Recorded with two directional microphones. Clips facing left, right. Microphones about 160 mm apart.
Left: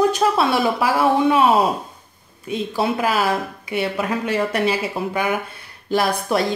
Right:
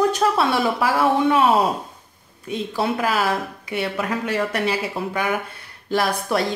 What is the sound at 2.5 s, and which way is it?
Speech, 15° left (ahead or behind).